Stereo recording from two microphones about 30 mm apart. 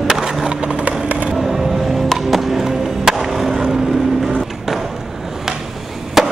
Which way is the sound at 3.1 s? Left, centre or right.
Centre.